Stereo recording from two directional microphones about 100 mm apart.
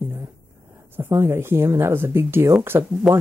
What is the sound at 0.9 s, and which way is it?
Speech, 25° right (ahead or behind).